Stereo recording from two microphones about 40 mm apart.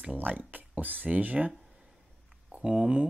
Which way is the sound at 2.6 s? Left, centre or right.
Right.